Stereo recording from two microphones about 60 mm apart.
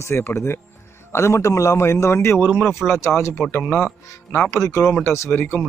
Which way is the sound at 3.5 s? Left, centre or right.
Left.